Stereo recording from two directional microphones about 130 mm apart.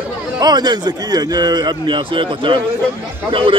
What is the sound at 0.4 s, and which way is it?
A man's voice, 35° right (ahead or behind).